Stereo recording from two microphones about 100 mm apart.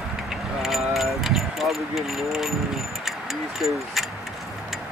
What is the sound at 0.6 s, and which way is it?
Speech, 5° right (ahead or behind).